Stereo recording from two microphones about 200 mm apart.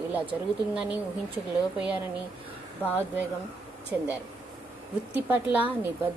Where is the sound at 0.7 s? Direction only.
5° right (ahead or behind).